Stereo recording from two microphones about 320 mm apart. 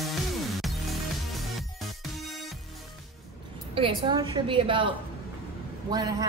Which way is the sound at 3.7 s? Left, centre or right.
Centre.